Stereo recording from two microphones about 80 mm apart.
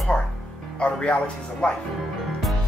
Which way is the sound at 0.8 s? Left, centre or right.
Centre.